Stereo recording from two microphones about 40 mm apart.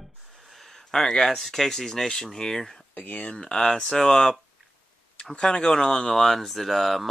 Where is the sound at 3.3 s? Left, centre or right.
Left.